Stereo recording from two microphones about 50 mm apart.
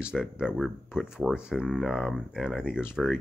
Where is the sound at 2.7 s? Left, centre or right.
Centre.